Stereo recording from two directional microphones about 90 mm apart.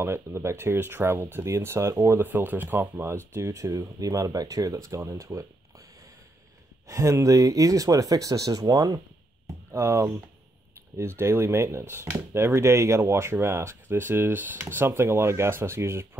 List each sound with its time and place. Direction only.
0.0 s speech: 30° right (ahead or behind)
6.9 s speech: 35° right (ahead or behind)
9.7 s speech: 35° right (ahead or behind)